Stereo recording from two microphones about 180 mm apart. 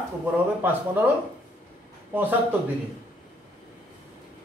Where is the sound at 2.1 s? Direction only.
10° right (ahead or behind).